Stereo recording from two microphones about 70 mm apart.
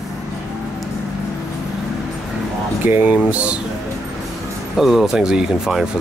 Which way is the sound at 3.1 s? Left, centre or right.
Centre.